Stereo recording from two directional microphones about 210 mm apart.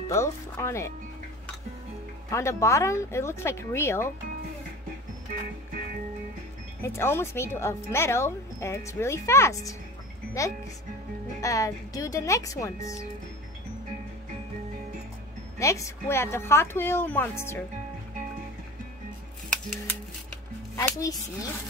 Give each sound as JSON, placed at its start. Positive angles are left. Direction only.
{"t": 0.1, "sound": "speech", "side_deg": 15}
{"t": 2.3, "sound": "speech", "side_deg": 15}
{"t": 6.8, "sound": "speech", "side_deg": 10}
{"t": 15.6, "sound": "speech", "side_deg": 15}
{"t": 19.5, "sound": "music", "side_deg": 5}
{"t": 20.7, "sound": "speech", "side_deg": 15}